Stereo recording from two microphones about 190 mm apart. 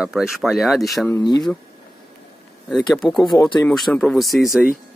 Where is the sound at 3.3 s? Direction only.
25° left (ahead or behind).